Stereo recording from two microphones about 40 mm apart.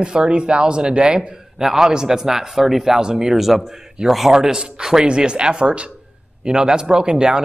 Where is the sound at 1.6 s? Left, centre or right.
Centre.